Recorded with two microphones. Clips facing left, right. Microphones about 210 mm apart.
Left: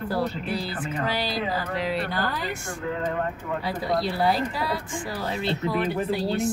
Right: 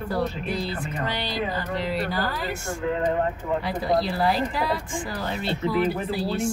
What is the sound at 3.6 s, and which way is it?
Speech, centre (ahead or behind).